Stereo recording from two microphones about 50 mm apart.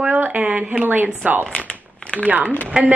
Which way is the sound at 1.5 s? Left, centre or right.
Left.